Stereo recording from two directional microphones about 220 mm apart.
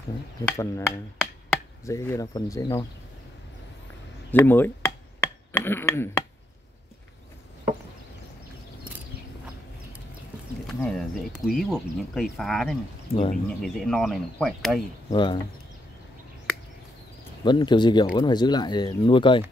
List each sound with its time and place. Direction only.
0.5 s chop: 10° left (ahead or behind)
4.3 s speech: 10° left (ahead or behind)
10.7 s speech: 5° left (ahead or behind)
13.1 s speech: 25° left (ahead or behind)
13.5 s speech: centre (ahead or behind)
15.0 s speech: 20° left (ahead or behind)
17.5 s speech: 20° left (ahead or behind)